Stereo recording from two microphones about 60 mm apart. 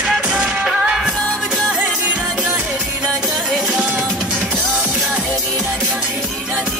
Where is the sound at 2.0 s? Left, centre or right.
Right.